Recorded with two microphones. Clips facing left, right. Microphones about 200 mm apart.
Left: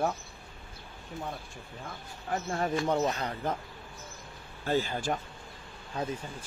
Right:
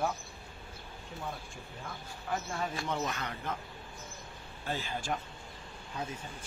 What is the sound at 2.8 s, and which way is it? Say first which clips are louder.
Speech: left 7 dB; 35° left (ahead or behind).